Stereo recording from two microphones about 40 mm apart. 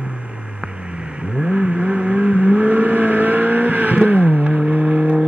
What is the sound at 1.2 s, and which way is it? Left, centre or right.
Vehicle, centre.